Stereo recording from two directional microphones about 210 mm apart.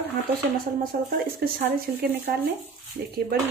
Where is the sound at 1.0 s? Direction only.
45° right (ahead or behind).